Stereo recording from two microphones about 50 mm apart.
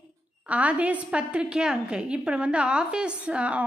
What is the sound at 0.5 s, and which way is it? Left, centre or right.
A woman's voice, right.